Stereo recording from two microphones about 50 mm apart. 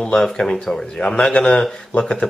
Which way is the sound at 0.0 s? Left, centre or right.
Centre.